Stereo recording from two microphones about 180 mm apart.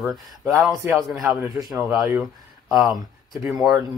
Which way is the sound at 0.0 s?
Centre (ahead or behind).